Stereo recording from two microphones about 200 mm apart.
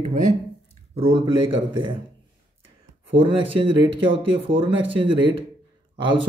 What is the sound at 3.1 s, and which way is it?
Speech, 25° right (ahead or behind).